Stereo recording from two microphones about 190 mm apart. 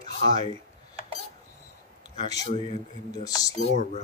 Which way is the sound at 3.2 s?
20° left (ahead or behind).